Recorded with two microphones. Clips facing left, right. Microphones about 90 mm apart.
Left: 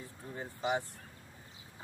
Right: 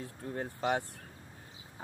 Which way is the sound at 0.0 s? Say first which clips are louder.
Right 5 dB; 60° right (ahead or behind).